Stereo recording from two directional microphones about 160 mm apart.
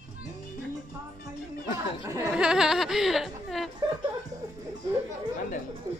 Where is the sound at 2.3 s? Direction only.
5° right (ahead or behind).